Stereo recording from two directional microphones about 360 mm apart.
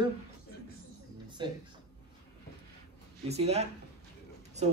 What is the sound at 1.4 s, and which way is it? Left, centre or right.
Speech, centre.